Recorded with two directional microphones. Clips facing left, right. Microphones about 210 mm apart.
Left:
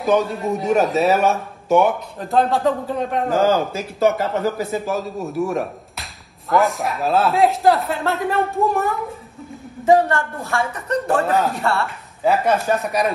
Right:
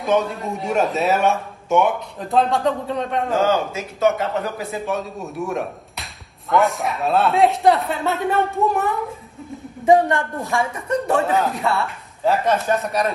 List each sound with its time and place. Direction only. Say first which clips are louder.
0.0 s a man's voice: left 2 dB; centre (ahead or behind)
9.8 s a man's voice: even; 15° right (ahead or behind)
11.1 s a man's voice: left 1 dB; centre (ahead or behind)